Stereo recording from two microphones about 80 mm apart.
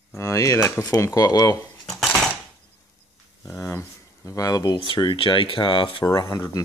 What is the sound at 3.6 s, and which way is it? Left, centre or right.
Speech, left.